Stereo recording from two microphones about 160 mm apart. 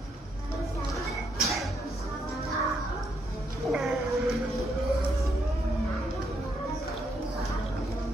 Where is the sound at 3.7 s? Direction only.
Centre (ahead or behind).